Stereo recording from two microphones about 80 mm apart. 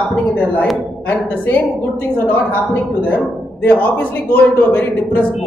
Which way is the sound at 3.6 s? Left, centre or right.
Left.